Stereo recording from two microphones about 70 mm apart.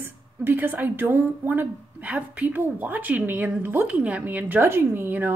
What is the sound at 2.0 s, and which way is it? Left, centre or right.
Speech, right.